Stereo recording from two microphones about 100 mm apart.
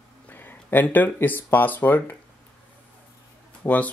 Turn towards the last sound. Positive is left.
turn(degrees=15)  # may be behind; listen again after turning